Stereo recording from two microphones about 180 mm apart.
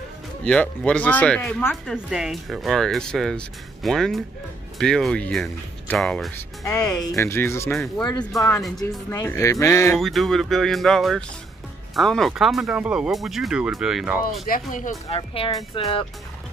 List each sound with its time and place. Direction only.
0.5 s speech: 5° left (ahead or behind)
7.7 s speech: centre (ahead or behind)
9.1 s speech: 15° left (ahead or behind)
9.9 s speech: centre (ahead or behind)
14.5 s speech: 50° left (ahead or behind)
15.0 s speech: 30° left (ahead or behind)